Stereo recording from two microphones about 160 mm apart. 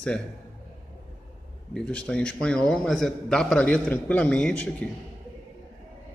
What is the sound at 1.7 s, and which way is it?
A man's voice, 5° left (ahead or behind).